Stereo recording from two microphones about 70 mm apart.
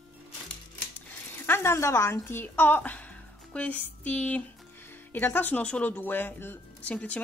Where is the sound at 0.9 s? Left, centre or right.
Left.